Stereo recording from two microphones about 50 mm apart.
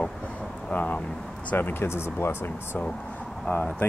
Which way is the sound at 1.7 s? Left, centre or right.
Left.